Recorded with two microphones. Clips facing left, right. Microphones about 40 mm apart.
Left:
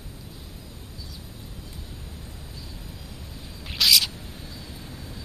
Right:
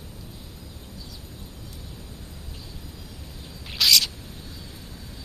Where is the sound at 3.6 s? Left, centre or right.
Centre.